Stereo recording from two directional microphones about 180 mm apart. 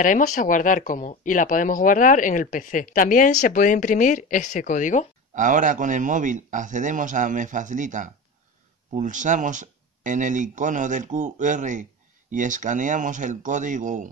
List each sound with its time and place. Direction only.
0.0 s speech: 45° left (ahead or behind)
5.3 s speech: 45° right (ahead or behind)